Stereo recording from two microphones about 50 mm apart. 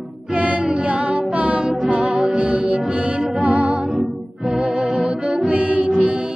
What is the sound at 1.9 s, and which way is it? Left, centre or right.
Music, centre.